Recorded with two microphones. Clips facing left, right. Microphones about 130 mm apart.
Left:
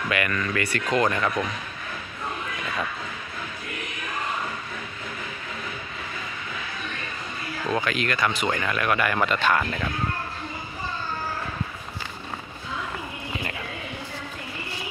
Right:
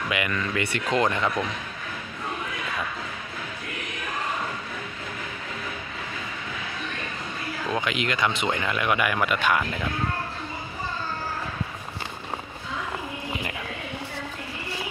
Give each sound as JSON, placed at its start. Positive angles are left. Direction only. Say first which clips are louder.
{"t": 0.1, "sound": "speech", "louder": "left 2 dB", "side_deg": -15}
{"t": 7.8, "sound": "speech", "louder": "even", "side_deg": -20}